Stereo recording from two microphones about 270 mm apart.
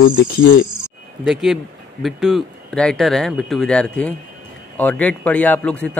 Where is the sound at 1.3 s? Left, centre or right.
Centre.